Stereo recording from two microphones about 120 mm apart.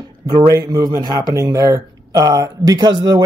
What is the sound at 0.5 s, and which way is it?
Speech, 30° right (ahead or behind).